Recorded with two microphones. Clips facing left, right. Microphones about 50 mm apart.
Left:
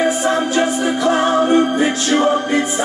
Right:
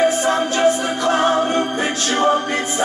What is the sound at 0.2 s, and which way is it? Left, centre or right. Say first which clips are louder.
Music: even; centre.